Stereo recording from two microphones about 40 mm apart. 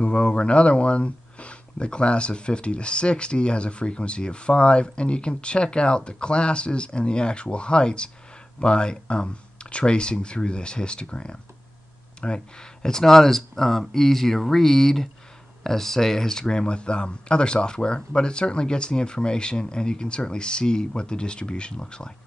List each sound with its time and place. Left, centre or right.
0.0 s speech: left
12.8 s speech: centre